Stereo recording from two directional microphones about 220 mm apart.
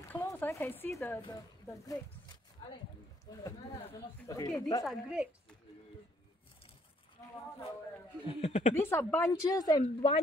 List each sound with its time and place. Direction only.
0.1 s a sound: 10° left (ahead or behind)
1.2 s speech: 15° left (ahead or behind)
4.3 s speech: 15° left (ahead or behind)
4.8 s a woman's voice: 5° right (ahead or behind)
8.3 s speech: 30° left (ahead or behind)
8.7 s speech: 10° left (ahead or behind)